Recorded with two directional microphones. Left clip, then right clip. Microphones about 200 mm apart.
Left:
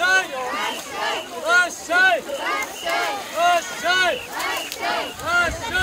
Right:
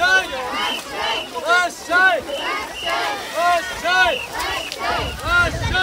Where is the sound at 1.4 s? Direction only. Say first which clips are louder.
Even; 5° left (ahead or behind).